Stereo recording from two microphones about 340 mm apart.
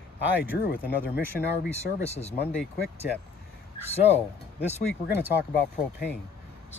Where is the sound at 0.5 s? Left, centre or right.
Left.